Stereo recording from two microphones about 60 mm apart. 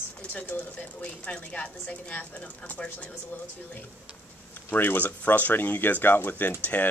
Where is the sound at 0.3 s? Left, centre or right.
Left.